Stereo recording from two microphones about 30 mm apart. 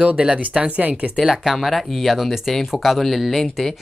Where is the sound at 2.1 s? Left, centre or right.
Centre.